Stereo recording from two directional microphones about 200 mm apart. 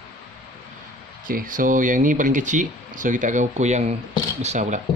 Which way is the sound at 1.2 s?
45° right (ahead or behind).